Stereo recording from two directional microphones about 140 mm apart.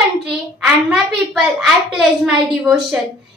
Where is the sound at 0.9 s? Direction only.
5° right (ahead or behind).